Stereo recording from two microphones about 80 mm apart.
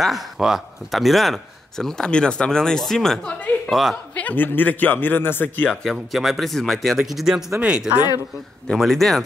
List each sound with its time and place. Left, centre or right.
0.0 s speech: centre
3.3 s speech: centre
5.7 s speech: centre
7.6 s speech: centre
8.6 s speech: centre